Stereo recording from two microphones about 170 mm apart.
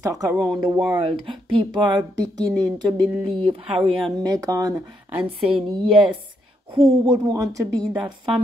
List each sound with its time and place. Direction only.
0.0 s speech: 20° right (ahead or behind)
0.9 s speech: 30° right (ahead or behind)
5.2 s a woman's voice: 30° right (ahead or behind)